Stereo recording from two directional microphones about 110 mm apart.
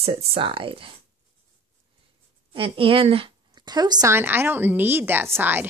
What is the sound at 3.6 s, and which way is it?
Speech, 40° right (ahead or behind).